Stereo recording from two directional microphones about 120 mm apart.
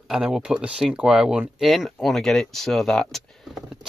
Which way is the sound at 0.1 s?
5° right (ahead or behind).